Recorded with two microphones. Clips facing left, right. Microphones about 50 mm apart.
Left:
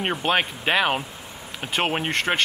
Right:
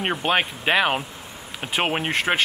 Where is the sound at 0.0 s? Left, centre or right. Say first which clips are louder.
Right 1 dB; centre.